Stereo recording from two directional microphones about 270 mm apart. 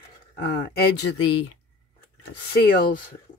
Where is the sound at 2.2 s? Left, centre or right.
Left.